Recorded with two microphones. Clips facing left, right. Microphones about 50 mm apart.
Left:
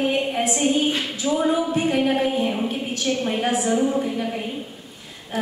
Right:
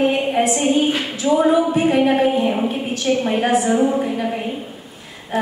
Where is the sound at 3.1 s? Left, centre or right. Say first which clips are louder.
Right 5 dB; centre.